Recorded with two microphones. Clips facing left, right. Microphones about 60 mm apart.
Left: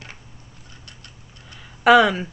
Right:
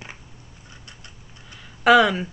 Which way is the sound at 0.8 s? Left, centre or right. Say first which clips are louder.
Even; centre.